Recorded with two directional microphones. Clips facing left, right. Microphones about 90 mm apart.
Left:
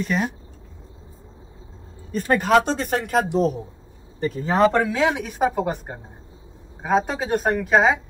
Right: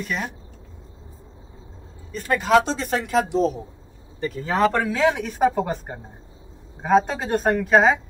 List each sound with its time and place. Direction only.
2.1 s speech: 45° left (ahead or behind)
4.2 s speech: 25° left (ahead or behind); by 8.0 s 10° left (ahead or behind)